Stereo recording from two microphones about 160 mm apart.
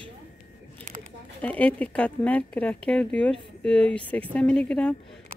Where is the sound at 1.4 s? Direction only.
10° left (ahead or behind).